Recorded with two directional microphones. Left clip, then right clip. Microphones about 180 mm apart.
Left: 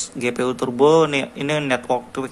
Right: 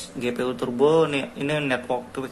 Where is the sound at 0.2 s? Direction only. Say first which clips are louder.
Left 4 dB; 20° left (ahead or behind).